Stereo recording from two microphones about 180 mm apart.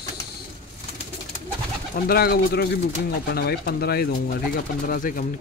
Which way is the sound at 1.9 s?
55° left (ahead or behind).